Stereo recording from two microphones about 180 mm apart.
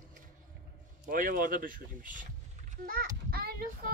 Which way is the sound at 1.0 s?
50° right (ahead or behind).